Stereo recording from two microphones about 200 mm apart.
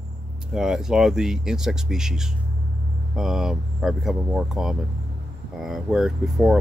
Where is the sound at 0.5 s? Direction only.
5° right (ahead or behind).